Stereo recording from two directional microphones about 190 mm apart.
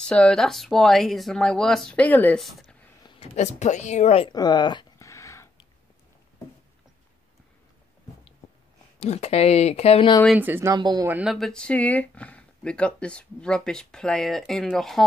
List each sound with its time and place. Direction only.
0.0 s speech: 5° left (ahead or behind)
3.2 s speech: 35° left (ahead or behind)
4.3 s a sound: 20° left (ahead or behind)
9.0 s speech: 35° left (ahead or behind)
10.2 s speech: 5° right (ahead or behind)
11.1 s speech: 5° right (ahead or behind)